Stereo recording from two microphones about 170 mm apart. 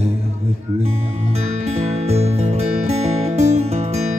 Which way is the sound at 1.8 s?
40° right (ahead or behind).